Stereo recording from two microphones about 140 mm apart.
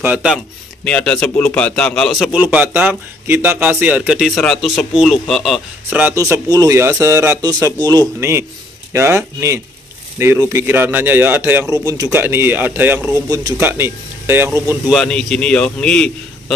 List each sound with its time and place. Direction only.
0.0 s a man's voice: 10° right (ahead or behind)
0.8 s a man's voice: 5° left (ahead or behind)
2.4 s a man's voice: 10° right (ahead or behind)
5.9 s a man's voice: 15° right (ahead or behind)
8.2 s a man's voice: 20° right (ahead or behind)
14.9 s a man's voice: centre (ahead or behind)